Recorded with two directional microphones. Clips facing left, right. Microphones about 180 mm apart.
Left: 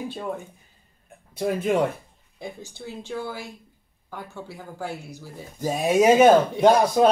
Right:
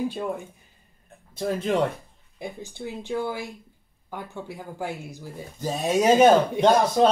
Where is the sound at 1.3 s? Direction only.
10° left (ahead or behind).